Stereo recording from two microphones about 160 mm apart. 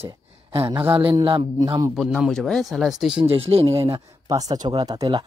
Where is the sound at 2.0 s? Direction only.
Centre (ahead or behind).